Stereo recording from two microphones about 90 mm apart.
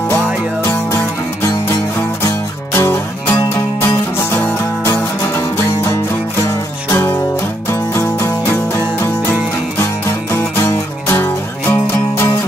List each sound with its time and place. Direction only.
0.7 s music: 30° left (ahead or behind)
6.9 s music: 25° left (ahead or behind)